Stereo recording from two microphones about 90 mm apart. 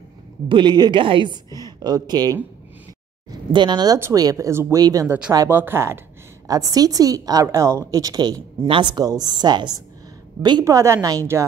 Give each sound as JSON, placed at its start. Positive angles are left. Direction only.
{"t": 0.5, "sound": "a woman's voice", "side_deg": -60}
{"t": 4.1, "sound": "speech", "side_deg": -40}
{"t": 4.7, "sound": "a woman's voice", "side_deg": -40}
{"t": 5.5, "sound": "speech", "side_deg": -25}
{"t": 6.4, "sound": "a woman's voice", "side_deg": -40}
{"t": 7.5, "sound": "speech", "side_deg": -30}
{"t": 8.6, "sound": "speech", "side_deg": -75}
{"t": 8.9, "sound": "a woman's voice", "side_deg": -50}
{"t": 10.6, "sound": "speech", "side_deg": -35}